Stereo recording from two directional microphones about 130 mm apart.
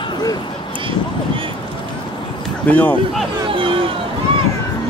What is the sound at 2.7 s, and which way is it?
Speech, 15° left (ahead or behind).